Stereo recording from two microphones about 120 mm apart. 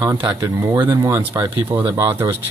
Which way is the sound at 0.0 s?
35° right (ahead or behind).